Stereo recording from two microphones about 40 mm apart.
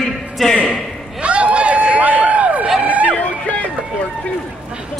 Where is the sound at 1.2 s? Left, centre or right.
Right.